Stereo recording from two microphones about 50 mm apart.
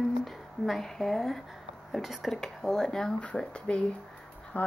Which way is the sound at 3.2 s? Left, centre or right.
Left.